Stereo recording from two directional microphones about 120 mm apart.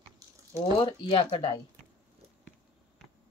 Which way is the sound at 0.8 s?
45° left (ahead or behind).